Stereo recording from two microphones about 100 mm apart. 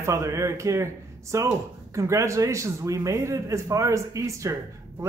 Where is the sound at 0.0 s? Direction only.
30° right (ahead or behind).